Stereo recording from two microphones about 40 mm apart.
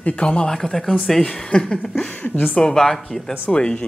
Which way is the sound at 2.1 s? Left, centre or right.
Left.